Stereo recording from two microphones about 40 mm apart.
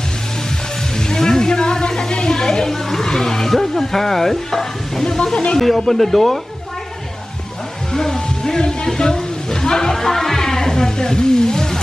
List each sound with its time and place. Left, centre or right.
0.9 s a sound: centre
5.2 s speech: left
5.6 s speech: centre
7.9 s a woman's voice: centre